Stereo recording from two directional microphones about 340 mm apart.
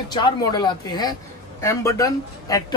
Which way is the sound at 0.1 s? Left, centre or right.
Centre.